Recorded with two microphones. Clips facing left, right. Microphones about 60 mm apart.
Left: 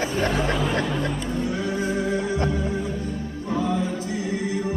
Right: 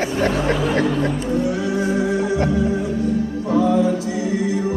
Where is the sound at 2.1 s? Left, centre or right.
Left.